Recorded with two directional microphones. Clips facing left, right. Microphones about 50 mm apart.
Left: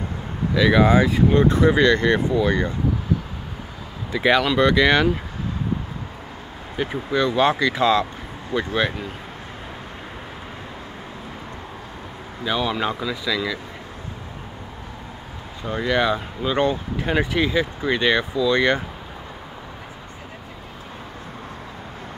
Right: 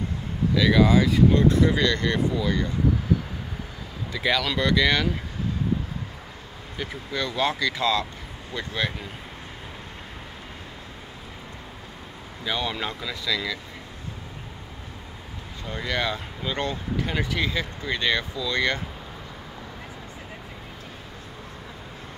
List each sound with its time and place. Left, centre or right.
0.6 s speech: left
2.3 s speech: left
4.1 s speech: left
7.1 s speech: left
12.4 s speech: centre
15.6 s speech: centre